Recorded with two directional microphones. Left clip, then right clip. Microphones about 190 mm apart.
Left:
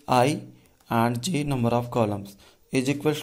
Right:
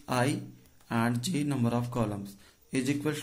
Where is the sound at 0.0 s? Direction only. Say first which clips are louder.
Left 9 dB; 25° left (ahead or behind).